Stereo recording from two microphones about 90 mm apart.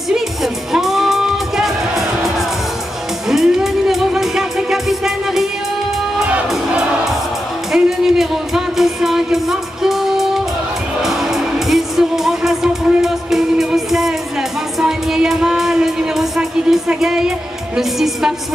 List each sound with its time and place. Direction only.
0.1 s music: 5° right (ahead or behind)
7.7 s music: 5° right (ahead or behind)
17.7 s a woman's voice: 5° right (ahead or behind)